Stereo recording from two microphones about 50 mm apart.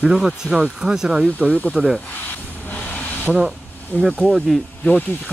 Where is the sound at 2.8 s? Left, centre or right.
Left.